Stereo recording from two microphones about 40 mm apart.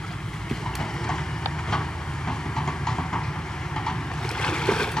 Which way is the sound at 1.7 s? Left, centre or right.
Centre.